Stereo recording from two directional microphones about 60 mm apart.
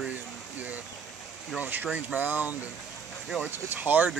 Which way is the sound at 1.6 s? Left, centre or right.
Right.